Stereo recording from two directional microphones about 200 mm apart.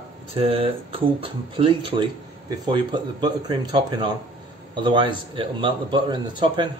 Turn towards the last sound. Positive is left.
turn(degrees=-25)  # may be behind; listen again after turning